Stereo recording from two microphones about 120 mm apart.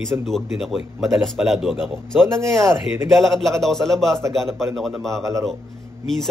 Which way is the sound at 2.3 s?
25° right (ahead or behind).